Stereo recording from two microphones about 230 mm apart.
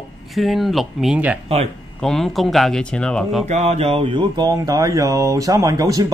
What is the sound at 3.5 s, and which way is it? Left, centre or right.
Speech, right.